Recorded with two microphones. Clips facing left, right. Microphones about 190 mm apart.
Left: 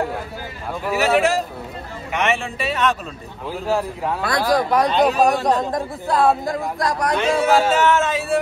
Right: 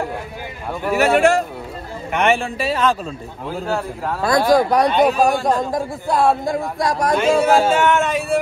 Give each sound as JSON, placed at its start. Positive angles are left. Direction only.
{"t": 0.8, "sound": "a man's voice", "side_deg": 0}
{"t": 2.4, "sound": "a man's voice", "side_deg": -35}
{"t": 3.4, "sound": "a man's voice", "side_deg": 0}
{"t": 4.2, "sound": "speech", "side_deg": -25}
{"t": 4.6, "sound": "a man's voice", "side_deg": 0}